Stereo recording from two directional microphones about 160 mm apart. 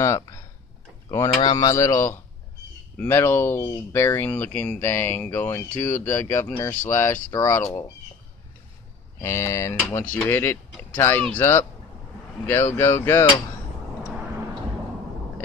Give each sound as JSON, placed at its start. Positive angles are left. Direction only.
{"t": 0.0, "sound": "a sound", "side_deg": 20}
{"t": 1.4, "sound": "speech", "side_deg": 25}
{"t": 9.2, "sound": "speech", "side_deg": 15}
{"t": 12.7, "sound": "speech", "side_deg": 15}